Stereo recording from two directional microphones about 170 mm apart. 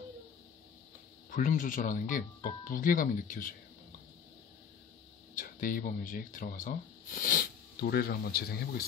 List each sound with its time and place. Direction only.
1.3 s speech: 50° left (ahead or behind)
5.3 s speech: 55° left (ahead or behind)